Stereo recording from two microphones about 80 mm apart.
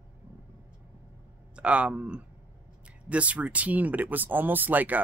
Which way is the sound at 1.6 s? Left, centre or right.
Centre.